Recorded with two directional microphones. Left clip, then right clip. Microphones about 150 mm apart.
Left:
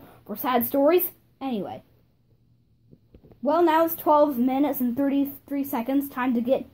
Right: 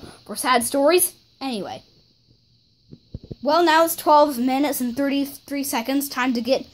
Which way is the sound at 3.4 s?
15° right (ahead or behind).